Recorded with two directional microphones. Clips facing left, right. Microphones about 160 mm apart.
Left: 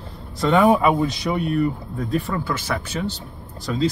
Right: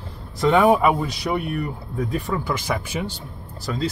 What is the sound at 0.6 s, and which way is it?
Speech, 15° right (ahead or behind).